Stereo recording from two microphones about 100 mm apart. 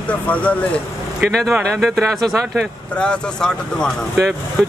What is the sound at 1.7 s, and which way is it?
Speech, 5° left (ahead or behind).